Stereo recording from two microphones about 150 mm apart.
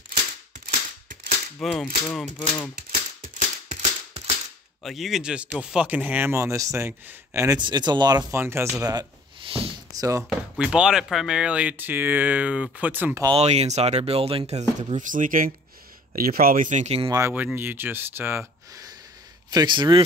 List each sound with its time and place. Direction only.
0.7 s a sound: 65° right (ahead or behind)
1.6 s cap gun: centre (ahead or behind)
2.0 s speech: 10° left (ahead or behind)
2.7 s typewriter: 75° right (ahead or behind)
4.8 s speech: centre (ahead or behind)
7.6 s speech: 30° right (ahead or behind)
8.4 s speech: 15° right (ahead or behind)
10.6 s speech: 5° right (ahead or behind)
13.4 s speech: 45° right (ahead or behind)
14.8 s speech: 55° right (ahead or behind)
16.2 s speech: 75° right (ahead or behind); by 17.1 s 45° right (ahead or behind)
17.3 s speech: 10° right (ahead or behind)
19.5 s speech: 30° right (ahead or behind)